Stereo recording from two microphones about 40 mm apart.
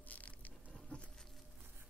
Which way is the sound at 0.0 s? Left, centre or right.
Left.